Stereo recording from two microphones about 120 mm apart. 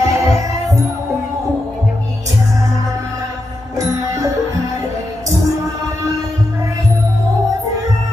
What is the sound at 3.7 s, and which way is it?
Music, 25° right (ahead or behind).